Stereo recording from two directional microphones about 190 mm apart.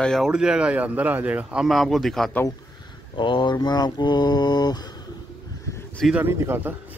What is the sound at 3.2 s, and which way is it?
Mantra, 25° left (ahead or behind).